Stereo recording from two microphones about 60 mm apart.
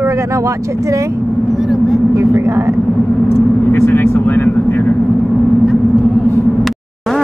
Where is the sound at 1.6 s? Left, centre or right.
Centre.